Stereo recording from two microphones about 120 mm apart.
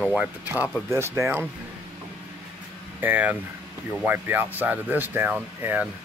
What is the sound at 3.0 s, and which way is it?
Speech, 15° right (ahead or behind).